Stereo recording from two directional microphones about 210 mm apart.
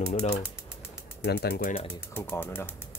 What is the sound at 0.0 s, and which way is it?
Speech, 30° left (ahead or behind).